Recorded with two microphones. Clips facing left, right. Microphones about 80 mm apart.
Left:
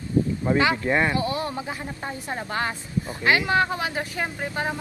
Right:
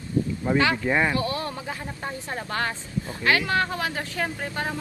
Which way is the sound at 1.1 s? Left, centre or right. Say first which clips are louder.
Left 1 dB; left.